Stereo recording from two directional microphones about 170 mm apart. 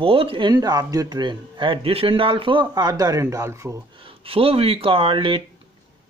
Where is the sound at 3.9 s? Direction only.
30° right (ahead or behind).